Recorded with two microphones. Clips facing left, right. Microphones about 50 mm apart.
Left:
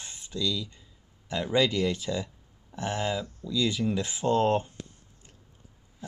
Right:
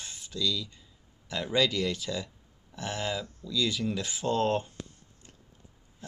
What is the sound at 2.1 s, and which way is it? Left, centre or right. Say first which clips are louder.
Speech: left 3 dB; centre.